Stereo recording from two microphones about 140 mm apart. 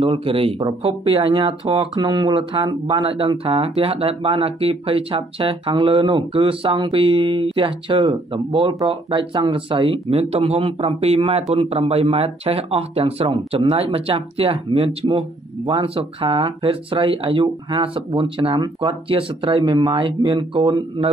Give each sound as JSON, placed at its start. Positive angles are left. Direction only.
{"t": 0.0, "sound": "speech", "side_deg": -40}
{"t": 19.0, "sound": "speech", "side_deg": -40}